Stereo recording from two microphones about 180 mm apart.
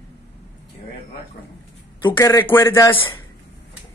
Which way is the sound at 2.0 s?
15° left (ahead or behind).